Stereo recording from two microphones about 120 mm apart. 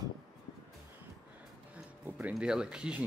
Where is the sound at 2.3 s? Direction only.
5° right (ahead or behind).